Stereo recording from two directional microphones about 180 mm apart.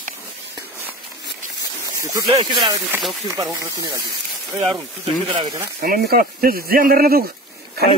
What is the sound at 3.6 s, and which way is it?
Speech, 20° right (ahead or behind).